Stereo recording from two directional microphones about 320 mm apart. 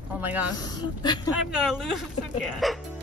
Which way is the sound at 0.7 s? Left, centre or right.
Centre.